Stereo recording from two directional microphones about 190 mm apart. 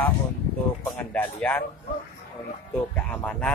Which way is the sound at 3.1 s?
5° left (ahead or behind).